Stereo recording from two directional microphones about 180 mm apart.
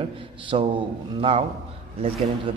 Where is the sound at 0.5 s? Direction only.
30° right (ahead or behind).